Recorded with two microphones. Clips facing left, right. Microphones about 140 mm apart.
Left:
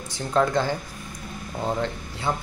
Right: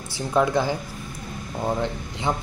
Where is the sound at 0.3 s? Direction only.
10° right (ahead or behind).